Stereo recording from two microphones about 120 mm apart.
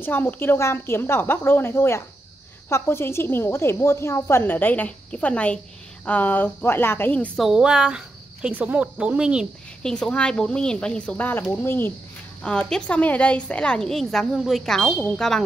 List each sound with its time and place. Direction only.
0.0 s a woman's voice: 15° left (ahead or behind)
7.3 s speech: 5° right (ahead or behind)
9.8 s a woman's voice: 5° left (ahead or behind)
12.4 s a woman's voice: 5° left (ahead or behind)